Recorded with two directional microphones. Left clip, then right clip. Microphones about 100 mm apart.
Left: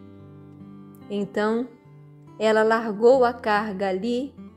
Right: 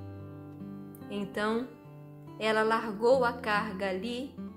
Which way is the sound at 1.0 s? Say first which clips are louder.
Left 8 dB; 65° left (ahead or behind).